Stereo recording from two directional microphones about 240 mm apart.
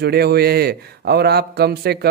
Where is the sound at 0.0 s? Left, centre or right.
Right.